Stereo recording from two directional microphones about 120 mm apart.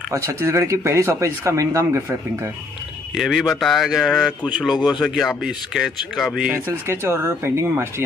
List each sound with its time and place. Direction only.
0.1 s speech: 25° right (ahead or behind)
3.2 s a man's voice: 5° right (ahead or behind)
6.5 s speech: 20° right (ahead or behind)